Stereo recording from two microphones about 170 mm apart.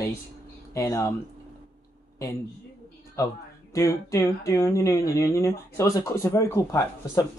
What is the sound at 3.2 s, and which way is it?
Speech, 20° left (ahead or behind).